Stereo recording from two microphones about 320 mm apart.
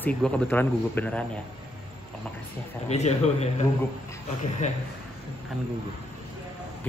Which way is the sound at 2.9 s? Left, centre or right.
Left.